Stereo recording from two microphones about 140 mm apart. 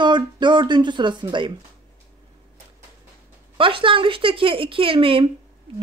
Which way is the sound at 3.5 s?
40° right (ahead or behind).